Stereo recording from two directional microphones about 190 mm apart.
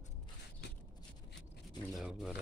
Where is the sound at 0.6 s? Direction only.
65° left (ahead or behind).